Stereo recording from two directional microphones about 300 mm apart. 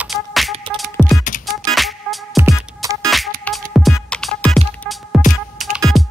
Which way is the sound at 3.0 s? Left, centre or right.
Centre.